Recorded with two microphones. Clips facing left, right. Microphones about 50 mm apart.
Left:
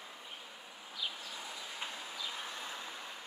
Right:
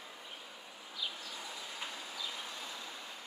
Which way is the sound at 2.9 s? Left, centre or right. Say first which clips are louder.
Left 1 dB; centre.